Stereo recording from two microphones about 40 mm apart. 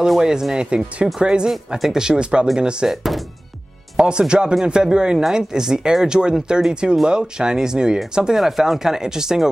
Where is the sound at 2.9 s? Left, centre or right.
Centre.